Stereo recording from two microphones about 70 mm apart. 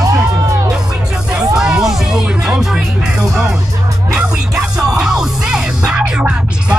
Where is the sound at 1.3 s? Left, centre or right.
Centre.